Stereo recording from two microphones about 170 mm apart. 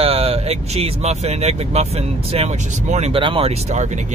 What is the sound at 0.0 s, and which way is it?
Speech, 35° right (ahead or behind).